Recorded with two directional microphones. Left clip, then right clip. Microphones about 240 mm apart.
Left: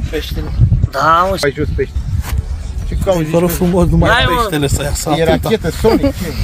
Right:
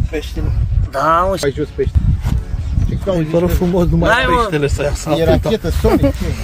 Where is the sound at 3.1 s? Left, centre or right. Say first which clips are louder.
Left 2 dB; left.